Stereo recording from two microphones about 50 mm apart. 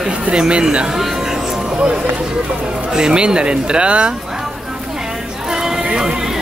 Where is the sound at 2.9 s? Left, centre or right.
Centre.